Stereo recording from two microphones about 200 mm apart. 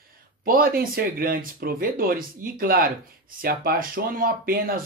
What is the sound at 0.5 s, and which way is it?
Speech, 50° right (ahead or behind).